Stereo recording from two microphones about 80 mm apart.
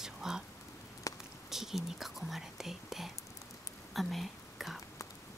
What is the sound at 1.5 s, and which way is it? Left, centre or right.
Speech, centre.